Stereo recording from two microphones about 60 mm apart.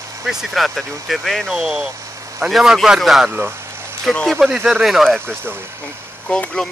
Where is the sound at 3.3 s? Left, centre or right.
Right.